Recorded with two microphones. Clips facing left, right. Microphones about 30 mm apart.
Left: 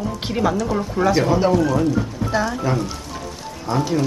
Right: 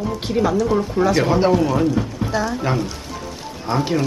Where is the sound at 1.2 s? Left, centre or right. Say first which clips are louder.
Right 1 dB; centre.